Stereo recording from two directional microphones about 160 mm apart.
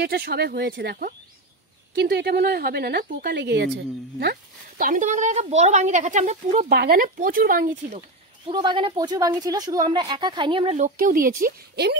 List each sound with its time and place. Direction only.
0.0 s speech: 80° right; by 6.7 s 50° right (ahead or behind)
6.7 s speech: 80° right; by 8.0 s 60° right (ahead or behind)
8.5 s a woman's voice: 30° right (ahead or behind)
11.0 s speech: 60° right (ahead or behind); by 12.0 s 90° right